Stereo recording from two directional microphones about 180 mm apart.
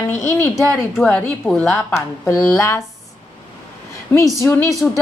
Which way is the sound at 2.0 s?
15° left (ahead or behind).